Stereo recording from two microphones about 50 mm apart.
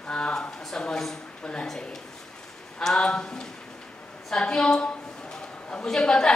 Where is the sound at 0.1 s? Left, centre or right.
Left.